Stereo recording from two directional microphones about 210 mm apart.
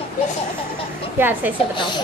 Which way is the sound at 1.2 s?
10° right (ahead or behind).